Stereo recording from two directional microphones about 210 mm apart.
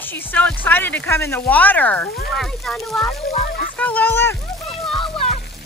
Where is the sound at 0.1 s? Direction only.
5° left (ahead or behind).